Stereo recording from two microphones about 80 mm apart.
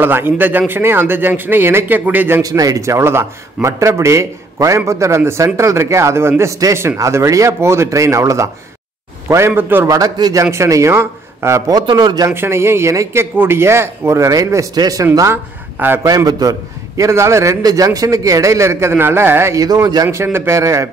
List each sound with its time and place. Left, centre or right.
0.0 s a man's voice: right
2.4 s a man's voice: right
9.6 s a man's voice: right
9.8 s a man's voice: right
10.4 s a man's voice: right
11.7 s a man's voice: right
12.3 s a man's voice: right
17.6 s a man's voice: right
19.5 s a man's voice: right
20.1 s a man's voice: right